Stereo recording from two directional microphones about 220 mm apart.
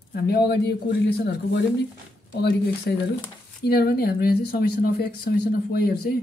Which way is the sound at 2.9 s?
50° left (ahead or behind).